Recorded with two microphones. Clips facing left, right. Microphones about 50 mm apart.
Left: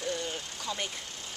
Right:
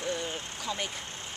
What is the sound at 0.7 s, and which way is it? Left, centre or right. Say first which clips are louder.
Speech: right 1 dB; centre.